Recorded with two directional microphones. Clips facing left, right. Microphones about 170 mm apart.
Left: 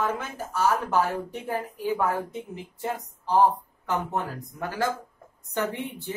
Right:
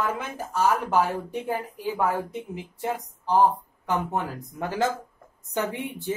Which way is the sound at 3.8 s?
20° right (ahead or behind).